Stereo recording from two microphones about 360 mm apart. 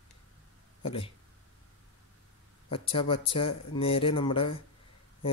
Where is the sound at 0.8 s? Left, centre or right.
Centre.